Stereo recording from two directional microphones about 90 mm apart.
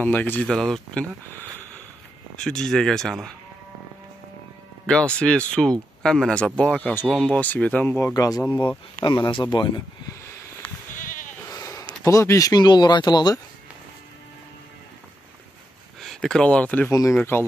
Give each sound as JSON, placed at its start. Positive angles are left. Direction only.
{"t": 0.0, "sound": "speech", "side_deg": 20}
{"t": 0.5, "sound": "speech", "side_deg": 5}
{"t": 2.3, "sound": "speech", "side_deg": 10}
{"t": 4.8, "sound": "speech", "side_deg": 10}
{"t": 8.1, "sound": "speech", "side_deg": 40}
{"t": 8.5, "sound": "speech", "side_deg": 60}
{"t": 11.5, "sound": "a sound", "side_deg": 35}
{"t": 12.0, "sound": "speech", "side_deg": 35}
{"t": 16.0, "sound": "speech", "side_deg": 5}
{"t": 17.2, "sound": "speech", "side_deg": 25}